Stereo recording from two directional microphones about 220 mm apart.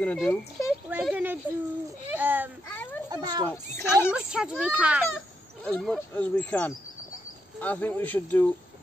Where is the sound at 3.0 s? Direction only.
20° right (ahead or behind).